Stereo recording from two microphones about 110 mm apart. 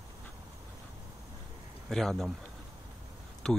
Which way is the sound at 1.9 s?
5° left (ahead or behind).